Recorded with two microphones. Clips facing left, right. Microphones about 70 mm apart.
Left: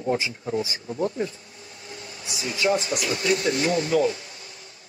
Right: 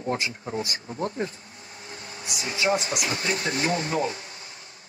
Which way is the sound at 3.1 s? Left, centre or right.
Right.